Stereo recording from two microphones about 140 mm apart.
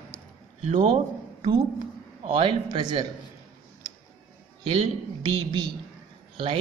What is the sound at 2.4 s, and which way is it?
Speech, 35° right (ahead or behind).